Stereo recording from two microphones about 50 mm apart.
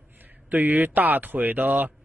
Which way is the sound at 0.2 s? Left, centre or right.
Right.